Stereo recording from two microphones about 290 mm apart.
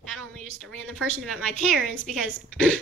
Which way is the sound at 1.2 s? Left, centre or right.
Centre.